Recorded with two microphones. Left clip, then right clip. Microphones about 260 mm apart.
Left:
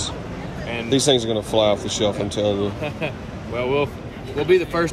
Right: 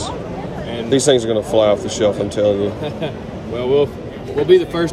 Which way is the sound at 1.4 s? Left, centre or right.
Left.